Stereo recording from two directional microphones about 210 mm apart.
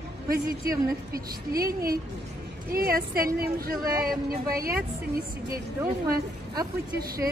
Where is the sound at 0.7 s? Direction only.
45° right (ahead or behind).